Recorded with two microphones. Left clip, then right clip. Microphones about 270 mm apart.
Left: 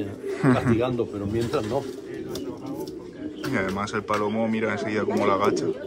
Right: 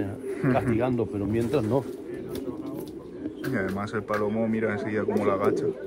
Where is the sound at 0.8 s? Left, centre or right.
Right.